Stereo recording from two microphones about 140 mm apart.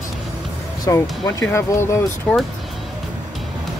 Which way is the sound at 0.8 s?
25° left (ahead or behind).